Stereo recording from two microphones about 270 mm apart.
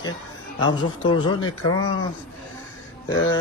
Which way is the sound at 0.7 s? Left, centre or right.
Centre.